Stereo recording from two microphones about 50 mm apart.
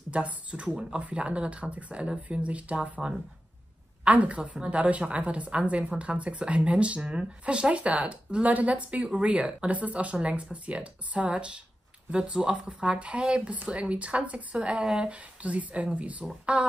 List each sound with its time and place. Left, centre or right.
0.1 s a woman's voice: right